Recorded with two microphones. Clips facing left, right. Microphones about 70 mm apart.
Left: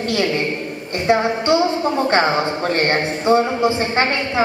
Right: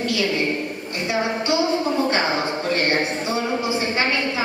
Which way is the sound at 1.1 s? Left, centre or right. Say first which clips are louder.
Left 7 dB; left.